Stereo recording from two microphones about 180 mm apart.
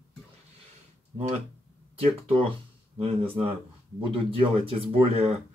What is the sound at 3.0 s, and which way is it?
Speech, 30° right (ahead or behind).